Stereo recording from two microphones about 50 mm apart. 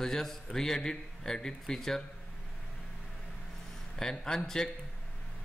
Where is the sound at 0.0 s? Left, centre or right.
Centre.